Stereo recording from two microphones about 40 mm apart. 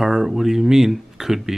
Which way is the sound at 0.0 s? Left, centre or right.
Centre.